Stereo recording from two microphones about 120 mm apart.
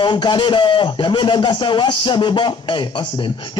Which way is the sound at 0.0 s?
45° left (ahead or behind).